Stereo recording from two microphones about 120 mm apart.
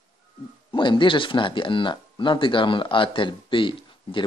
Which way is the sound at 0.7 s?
45° left (ahead or behind).